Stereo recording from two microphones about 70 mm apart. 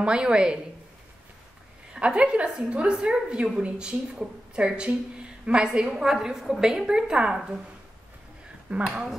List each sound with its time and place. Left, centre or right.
0.0 s a woman's voice: centre
2.0 s a woman's voice: centre
8.6 s speech: centre